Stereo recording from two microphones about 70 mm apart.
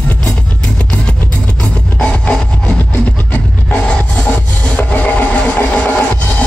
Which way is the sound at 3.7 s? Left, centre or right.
Centre.